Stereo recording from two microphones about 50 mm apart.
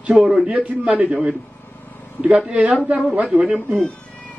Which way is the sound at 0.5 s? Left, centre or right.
Right.